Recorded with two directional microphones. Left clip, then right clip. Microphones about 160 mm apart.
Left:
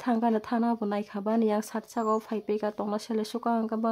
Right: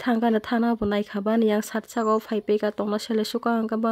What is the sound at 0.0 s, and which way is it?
Speech, 25° right (ahead or behind).